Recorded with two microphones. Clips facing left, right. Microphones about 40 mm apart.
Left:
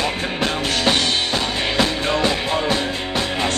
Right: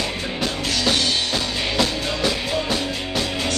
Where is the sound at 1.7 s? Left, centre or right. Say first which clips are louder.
Left 4 dB; left.